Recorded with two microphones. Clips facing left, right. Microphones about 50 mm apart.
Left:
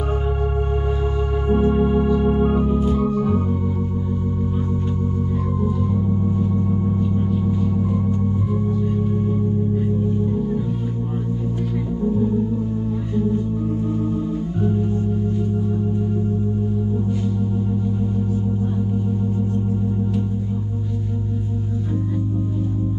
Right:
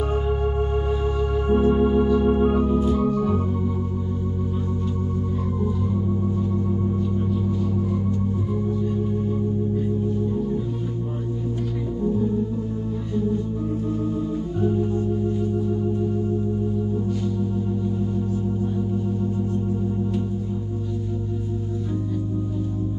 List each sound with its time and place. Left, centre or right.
1.5 s organ: centre
6.7 s organ: centre